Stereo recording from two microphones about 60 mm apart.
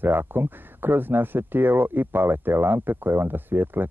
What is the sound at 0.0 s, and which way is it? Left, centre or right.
Speech, right.